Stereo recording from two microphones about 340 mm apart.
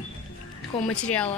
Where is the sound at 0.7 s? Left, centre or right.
Centre.